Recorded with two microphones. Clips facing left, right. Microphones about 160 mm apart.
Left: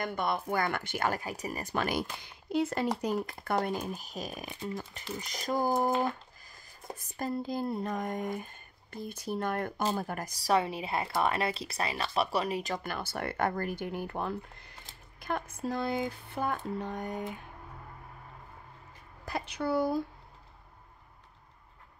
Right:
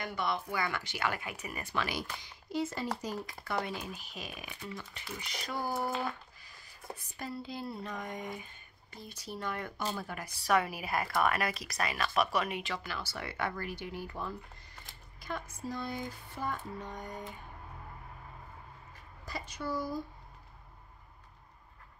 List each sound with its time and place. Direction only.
0.0 s speech: 50° left (ahead or behind)
2.2 s speech: 60° left (ahead or behind); by 5.9 s 45° left (ahead or behind)
7.0 s speech: 45° left (ahead or behind); by 17.4 s 65° left (ahead or behind)
19.2 s speech: 60° left (ahead or behind)